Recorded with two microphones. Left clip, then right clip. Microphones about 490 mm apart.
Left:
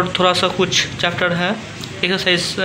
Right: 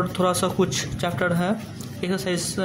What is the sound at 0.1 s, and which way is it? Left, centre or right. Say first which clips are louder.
Speech: left 7 dB; right.